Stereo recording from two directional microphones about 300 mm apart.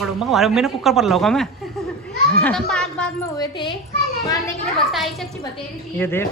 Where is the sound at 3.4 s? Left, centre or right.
Centre.